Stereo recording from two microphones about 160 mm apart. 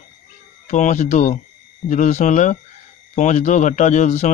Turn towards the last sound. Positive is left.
turn(degrees=50)  # may be behind; listen again after turning